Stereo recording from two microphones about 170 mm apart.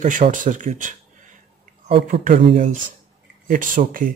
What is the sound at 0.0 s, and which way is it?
Speech, 50° right (ahead or behind).